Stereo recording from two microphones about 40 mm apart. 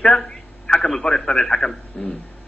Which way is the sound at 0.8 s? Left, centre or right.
Centre.